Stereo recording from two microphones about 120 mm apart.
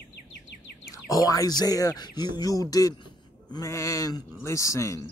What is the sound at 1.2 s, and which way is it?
Speech, 30° left (ahead or behind).